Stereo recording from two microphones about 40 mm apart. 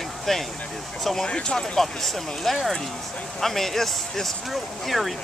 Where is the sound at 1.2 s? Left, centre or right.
Left.